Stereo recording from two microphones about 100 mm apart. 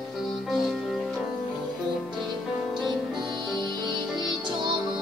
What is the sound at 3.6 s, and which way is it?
Music, 50° right (ahead or behind).